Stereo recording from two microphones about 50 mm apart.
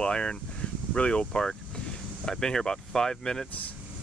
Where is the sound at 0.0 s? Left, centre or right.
Centre.